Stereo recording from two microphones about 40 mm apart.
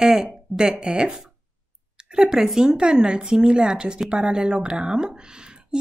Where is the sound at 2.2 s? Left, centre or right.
Centre.